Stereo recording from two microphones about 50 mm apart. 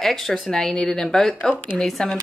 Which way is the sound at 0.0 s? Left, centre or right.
Centre.